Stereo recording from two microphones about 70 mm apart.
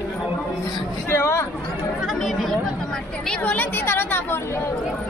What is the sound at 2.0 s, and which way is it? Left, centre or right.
Chatter, centre.